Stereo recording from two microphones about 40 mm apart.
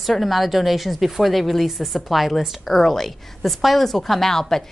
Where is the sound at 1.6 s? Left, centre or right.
Centre.